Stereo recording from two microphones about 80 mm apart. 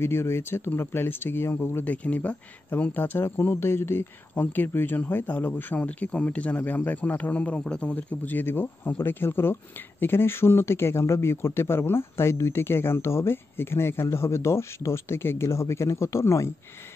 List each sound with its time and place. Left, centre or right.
0.0 s speech: left